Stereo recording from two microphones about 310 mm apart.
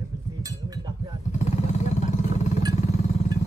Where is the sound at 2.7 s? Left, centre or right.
Left.